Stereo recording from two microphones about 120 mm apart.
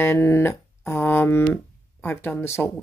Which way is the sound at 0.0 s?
20° left (ahead or behind).